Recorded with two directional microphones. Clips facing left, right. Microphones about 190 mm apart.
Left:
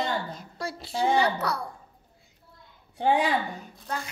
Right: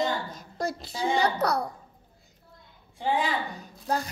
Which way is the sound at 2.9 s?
70° left (ahead or behind).